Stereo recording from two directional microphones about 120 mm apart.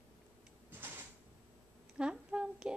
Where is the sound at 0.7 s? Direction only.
15° right (ahead or behind).